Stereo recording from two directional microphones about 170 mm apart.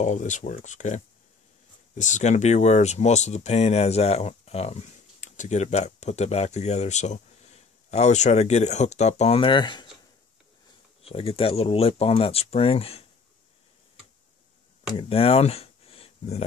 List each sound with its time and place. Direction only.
0.0 s speech: 45° left (ahead or behind); by 9.8 s 25° left (ahead or behind)
11.1 s speech: 35° left (ahead or behind)
15.0 s speech: 35° left (ahead or behind)